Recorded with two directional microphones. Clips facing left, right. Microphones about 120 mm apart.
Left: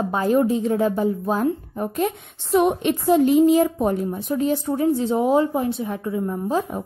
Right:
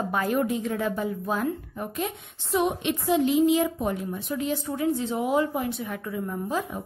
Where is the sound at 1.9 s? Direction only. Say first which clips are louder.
Left 8 dB; 50° left (ahead or behind); by 6.6 s 25° left (ahead or behind).